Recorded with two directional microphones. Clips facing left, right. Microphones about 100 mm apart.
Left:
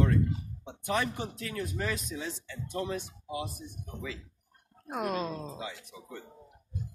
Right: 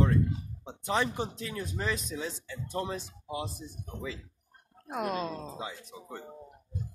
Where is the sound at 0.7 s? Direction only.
25° right (ahead or behind).